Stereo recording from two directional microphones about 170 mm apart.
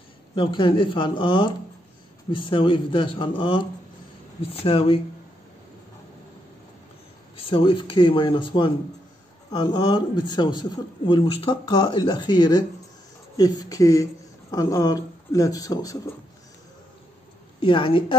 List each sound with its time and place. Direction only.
0.4 s a man's voice: 30° left (ahead or behind)
7.3 s speech: 30° left (ahead or behind)
17.6 s a man's voice: 30° left (ahead or behind)